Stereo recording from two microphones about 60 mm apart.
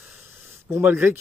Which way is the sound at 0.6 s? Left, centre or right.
Right.